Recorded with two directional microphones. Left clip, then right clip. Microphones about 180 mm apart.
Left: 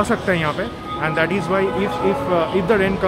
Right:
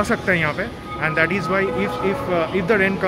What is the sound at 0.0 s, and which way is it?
Speech, 5° left (ahead or behind).